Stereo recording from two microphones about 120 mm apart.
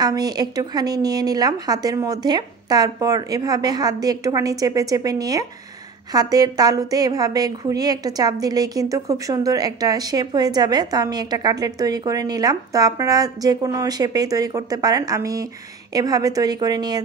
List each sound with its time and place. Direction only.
0.0 s a woman's voice: 35° right (ahead or behind)